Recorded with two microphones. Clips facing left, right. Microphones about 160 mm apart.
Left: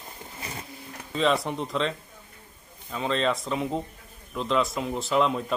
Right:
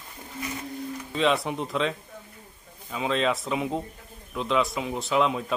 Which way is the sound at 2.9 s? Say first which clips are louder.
Even; 5° right (ahead or behind).